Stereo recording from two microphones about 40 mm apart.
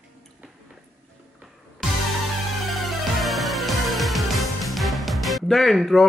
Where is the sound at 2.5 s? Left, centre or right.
Centre.